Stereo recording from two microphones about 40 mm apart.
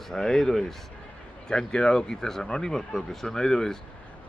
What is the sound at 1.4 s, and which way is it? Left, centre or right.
Speech, left.